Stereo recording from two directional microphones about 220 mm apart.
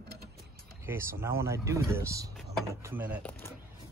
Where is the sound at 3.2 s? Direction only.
5° left (ahead or behind).